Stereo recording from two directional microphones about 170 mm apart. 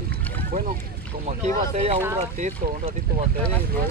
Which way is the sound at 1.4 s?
40° right (ahead or behind).